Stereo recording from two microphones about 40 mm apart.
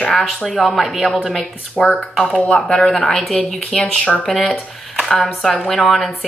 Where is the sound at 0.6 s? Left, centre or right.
Centre.